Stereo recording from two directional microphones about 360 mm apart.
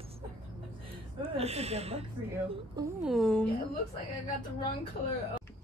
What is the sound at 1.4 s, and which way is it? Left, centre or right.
Speech, centre.